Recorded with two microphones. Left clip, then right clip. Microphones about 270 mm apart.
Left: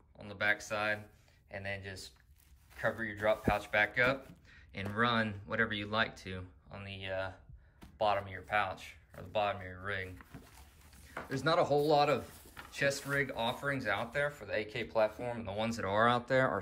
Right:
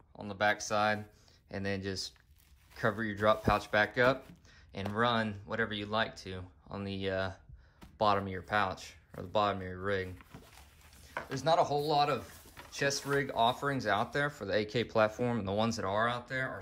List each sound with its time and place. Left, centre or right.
0.2 s speech: centre
6.8 s speech: centre
10.1 s a sound: centre
11.2 s speech: centre